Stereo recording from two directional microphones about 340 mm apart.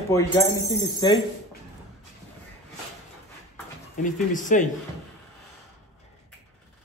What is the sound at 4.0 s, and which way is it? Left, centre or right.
Speech, left.